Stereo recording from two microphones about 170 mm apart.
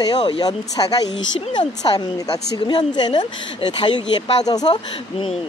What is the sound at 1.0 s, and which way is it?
Speech, 90° left.